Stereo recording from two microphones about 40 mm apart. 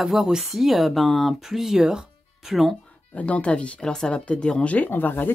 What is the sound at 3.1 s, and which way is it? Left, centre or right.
Speech, left.